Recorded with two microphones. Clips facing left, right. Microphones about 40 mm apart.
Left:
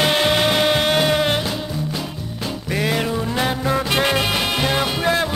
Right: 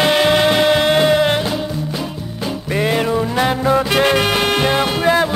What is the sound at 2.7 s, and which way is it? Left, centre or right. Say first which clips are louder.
Music: right 4 dB; centre.